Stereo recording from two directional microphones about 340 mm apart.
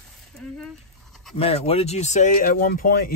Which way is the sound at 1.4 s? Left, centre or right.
Centre.